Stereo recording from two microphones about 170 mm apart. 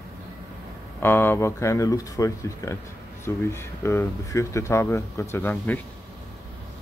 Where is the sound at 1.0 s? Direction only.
15° left (ahead or behind).